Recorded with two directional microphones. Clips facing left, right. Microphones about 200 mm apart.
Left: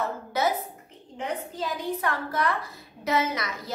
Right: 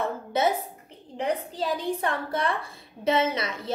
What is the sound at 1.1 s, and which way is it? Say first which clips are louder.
A woman's voice: right 4 dB; 35° right (ahead or behind).